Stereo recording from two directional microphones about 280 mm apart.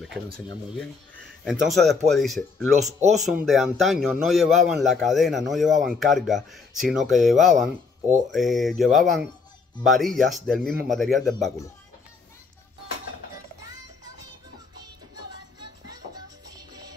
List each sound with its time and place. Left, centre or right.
1.4 s speech: centre